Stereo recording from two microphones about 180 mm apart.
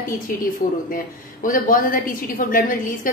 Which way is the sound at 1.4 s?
50° left (ahead or behind).